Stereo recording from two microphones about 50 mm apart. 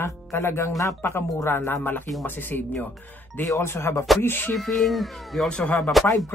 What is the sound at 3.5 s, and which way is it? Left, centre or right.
Speech, left.